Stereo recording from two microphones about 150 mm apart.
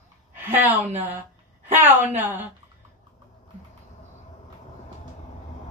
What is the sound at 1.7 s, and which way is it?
Speech, 15° right (ahead or behind).